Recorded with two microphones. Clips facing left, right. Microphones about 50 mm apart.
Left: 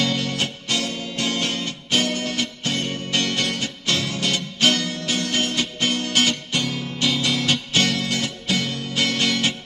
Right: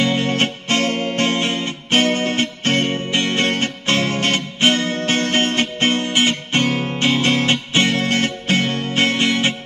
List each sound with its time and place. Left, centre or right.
0.0 s music: right
3.1 s music: right
6.6 s music: right